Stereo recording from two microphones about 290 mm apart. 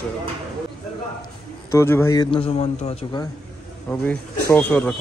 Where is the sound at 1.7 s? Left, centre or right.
Centre.